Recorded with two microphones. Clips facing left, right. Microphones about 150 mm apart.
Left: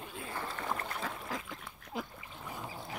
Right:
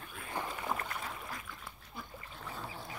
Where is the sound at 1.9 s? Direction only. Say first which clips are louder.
Left 9 dB; 90° left.